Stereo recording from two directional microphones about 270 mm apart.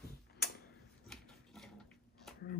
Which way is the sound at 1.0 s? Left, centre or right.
Centre.